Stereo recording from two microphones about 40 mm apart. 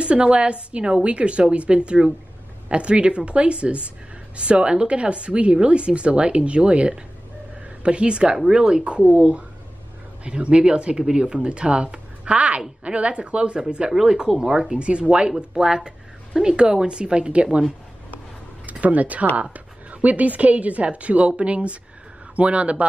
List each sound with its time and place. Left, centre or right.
0.0 s a woman's voice: right
9.1 s a woman's voice: right
14.8 s a woman's voice: right
18.7 s a woman's voice: right